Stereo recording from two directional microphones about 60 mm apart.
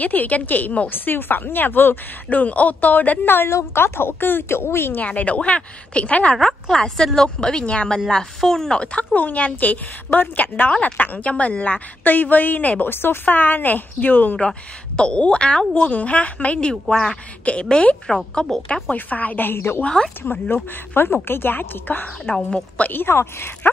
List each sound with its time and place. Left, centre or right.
0.0 s speech: left
3.4 s speech: left
5.0 s a woman's voice: left
6.3 s a woman's voice: centre; by 12.9 s left
12.9 s speech: left
15.0 s a woman's voice: centre
18.9 s speech: left
19.8 s a woman's voice: centre
20.2 s speech: left
22.3 s a woman's voice: centre
22.8 s speech: left